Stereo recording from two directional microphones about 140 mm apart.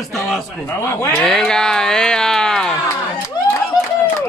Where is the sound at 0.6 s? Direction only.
15° left (ahead or behind).